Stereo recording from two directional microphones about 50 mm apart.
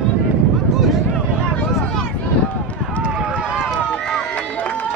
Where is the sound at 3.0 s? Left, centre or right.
Right.